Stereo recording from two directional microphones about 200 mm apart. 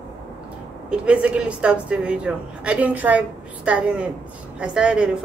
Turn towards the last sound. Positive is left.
turn(degrees=-5)  # may be behind; listen again after turning